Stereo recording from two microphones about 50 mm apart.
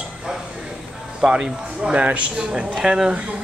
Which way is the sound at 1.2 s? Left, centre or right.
Centre.